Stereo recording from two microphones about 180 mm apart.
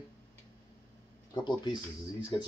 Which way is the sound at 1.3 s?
25° left (ahead or behind).